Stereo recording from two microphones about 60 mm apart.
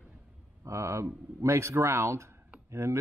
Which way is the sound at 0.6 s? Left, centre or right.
Right.